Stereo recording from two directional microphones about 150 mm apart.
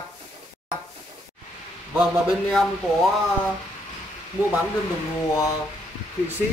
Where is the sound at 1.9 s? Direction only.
5° right (ahead or behind).